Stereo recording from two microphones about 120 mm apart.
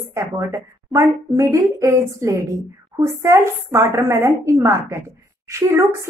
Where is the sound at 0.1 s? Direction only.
25° right (ahead or behind).